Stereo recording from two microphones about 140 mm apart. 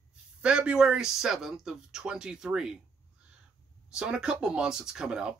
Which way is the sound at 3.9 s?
5° right (ahead or behind).